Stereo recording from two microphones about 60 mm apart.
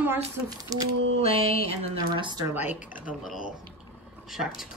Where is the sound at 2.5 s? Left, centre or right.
Right.